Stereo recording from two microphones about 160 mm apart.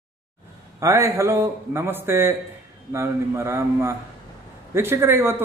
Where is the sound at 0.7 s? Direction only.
20° right (ahead or behind).